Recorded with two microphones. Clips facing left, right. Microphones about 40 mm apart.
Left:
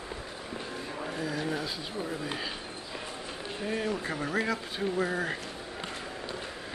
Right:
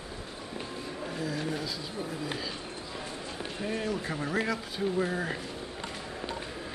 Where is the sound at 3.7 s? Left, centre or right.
Centre.